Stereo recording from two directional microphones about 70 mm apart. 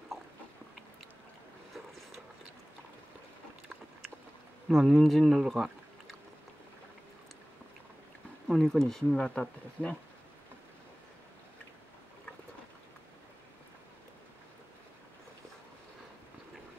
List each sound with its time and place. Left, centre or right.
4.6 s speech: centre
8.5 s speech: centre
9.8 s speech: right